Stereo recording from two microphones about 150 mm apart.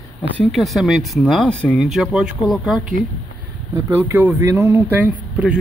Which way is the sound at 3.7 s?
20° right (ahead or behind).